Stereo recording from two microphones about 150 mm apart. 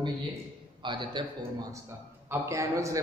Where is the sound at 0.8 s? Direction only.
30° right (ahead or behind).